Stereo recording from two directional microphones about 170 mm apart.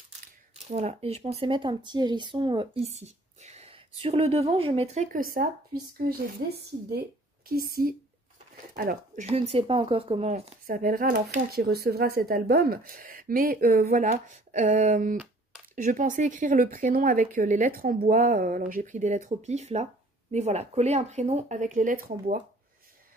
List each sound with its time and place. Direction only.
0.6 s speech: 40° right (ahead or behind)
2.9 s a woman's voice: 40° right (ahead or behind); by 7.9 s 60° right (ahead or behind)
8.7 s speech: 50° right (ahead or behind)
10.7 s a woman's voice: 55° right (ahead or behind)
11.5 s a woman's voice: 70° right (ahead or behind)
14.3 s speech: 45° right (ahead or behind)